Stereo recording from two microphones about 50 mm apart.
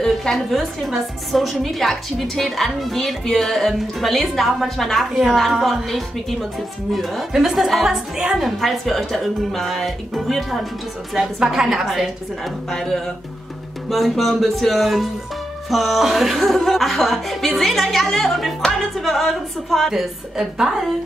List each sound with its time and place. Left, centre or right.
0.0 s a woman's voice: centre
11.4 s a woman's voice: centre
12.7 s music: centre
13.8 s a woman's voice: centre
19.9 s a woman's voice: centre